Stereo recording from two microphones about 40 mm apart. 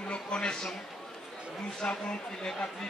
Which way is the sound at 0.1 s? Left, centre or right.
Left.